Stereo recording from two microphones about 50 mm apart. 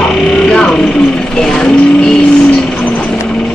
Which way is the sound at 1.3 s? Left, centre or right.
Centre.